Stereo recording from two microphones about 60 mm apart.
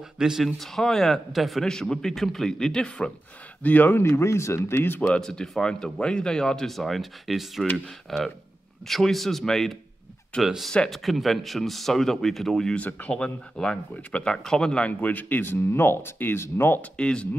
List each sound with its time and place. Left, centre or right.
0.2 s speech: centre
0.6 s speech: centre
1.7 s speech: centre
3.6 s speech: left
4.0 s speech: left
5.1 s speech: centre
7.7 s speech: centre
12.7 s speech: left
16.9 s speech: centre